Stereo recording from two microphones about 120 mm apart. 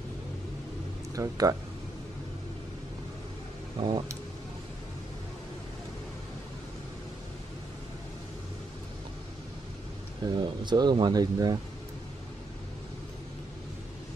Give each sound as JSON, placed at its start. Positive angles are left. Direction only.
{"t": 1.1, "sound": "speech", "side_deg": -30}
{"t": 3.8, "sound": "speech", "side_deg": -45}
{"t": 10.2, "sound": "speech", "side_deg": -40}